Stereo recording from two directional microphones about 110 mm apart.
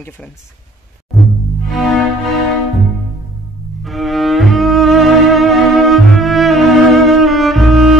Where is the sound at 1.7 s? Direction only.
Centre (ahead or behind).